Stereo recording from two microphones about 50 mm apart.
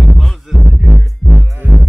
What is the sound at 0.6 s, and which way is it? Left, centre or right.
Music, centre.